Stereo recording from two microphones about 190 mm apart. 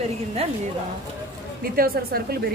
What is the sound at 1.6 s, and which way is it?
Speech, 50° right (ahead or behind).